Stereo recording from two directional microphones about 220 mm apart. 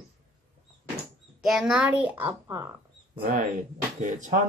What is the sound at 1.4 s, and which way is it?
A child's voice, centre (ahead or behind).